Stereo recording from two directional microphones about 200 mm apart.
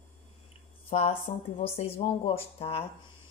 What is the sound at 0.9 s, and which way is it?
Speech, 30° left (ahead or behind).